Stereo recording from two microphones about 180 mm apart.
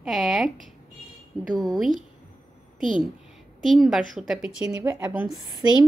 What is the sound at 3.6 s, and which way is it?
A woman's voice, centre (ahead or behind).